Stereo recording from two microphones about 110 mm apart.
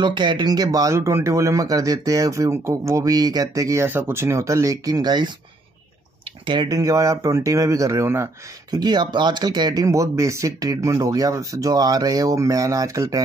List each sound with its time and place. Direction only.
0.0 s speech: 45° right (ahead or behind)
6.4 s speech: 45° right (ahead or behind); by 8.3 s 25° right (ahead or behind)
8.6 s speech: 40° right (ahead or behind)